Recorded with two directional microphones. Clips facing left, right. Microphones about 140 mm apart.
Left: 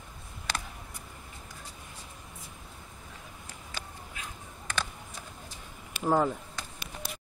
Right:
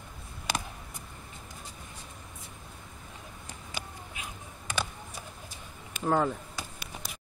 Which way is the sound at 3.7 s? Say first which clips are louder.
Right 2 dB; 15° right (ahead or behind).